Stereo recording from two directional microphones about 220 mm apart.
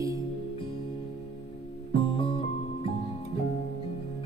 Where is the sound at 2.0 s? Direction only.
25° left (ahead or behind).